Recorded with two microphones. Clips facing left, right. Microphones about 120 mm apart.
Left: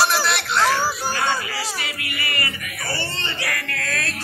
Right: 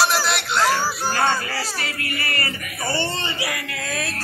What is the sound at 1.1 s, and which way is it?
Music, 45° right (ahead or behind).